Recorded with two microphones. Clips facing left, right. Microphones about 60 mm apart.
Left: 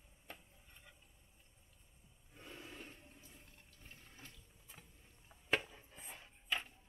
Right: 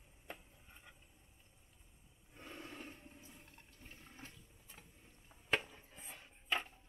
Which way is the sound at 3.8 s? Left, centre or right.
Centre.